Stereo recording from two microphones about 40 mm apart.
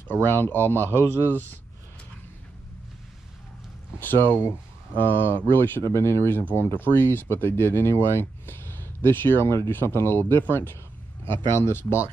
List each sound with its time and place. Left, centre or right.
0.1 s speech: left
4.0 s speech: left
6.5 s speech: left
11.2 s speech: left